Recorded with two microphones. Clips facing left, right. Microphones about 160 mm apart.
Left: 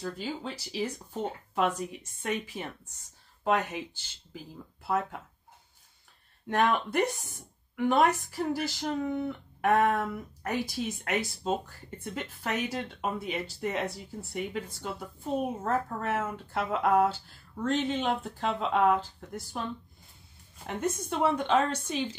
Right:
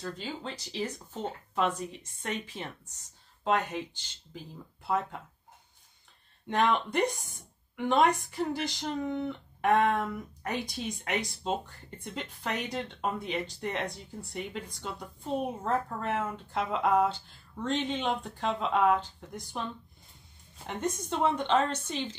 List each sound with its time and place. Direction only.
0.0 s speech: 10° left (ahead or behind)
4.8 s speech: 5° left (ahead or behind)
6.4 s speech: 5° left (ahead or behind)
21.1 s speech: 10° left (ahead or behind)